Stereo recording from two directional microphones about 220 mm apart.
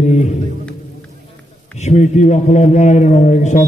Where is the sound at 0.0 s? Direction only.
30° left (ahead or behind).